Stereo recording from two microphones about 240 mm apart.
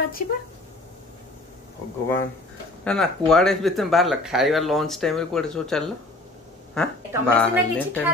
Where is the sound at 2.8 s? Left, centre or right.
Centre.